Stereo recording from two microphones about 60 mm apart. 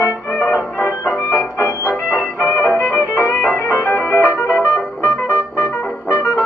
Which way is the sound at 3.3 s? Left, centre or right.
Left.